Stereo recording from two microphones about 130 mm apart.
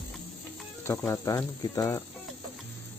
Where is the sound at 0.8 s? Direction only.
20° left (ahead or behind).